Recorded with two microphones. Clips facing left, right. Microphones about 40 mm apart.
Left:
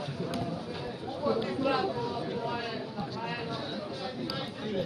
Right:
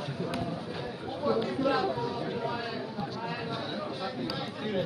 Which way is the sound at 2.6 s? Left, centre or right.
Centre.